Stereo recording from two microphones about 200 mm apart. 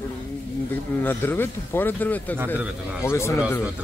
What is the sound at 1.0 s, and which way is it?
Speech, 10° left (ahead or behind).